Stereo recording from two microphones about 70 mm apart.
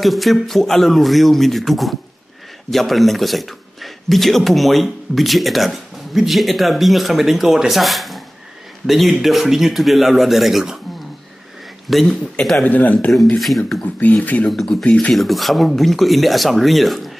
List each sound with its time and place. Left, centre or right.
0.0 s a man's voice: centre
11.9 s a man's voice: centre
12.6 s speech: left
13.4 s a man's voice: centre
13.9 s speech: left
14.5 s a man's voice: centre